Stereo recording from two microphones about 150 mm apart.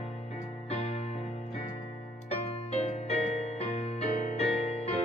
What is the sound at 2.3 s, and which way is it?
Music, 45° left (ahead or behind).